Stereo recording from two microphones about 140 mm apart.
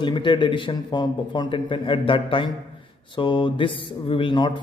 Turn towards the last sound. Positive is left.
turn(degrees=35)  # may be behind; listen again after turning